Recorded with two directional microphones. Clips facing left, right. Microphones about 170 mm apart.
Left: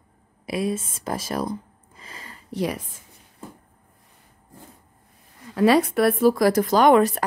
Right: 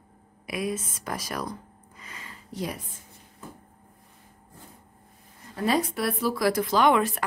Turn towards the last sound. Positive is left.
turn(degrees=40)  # may be behind; listen again after turning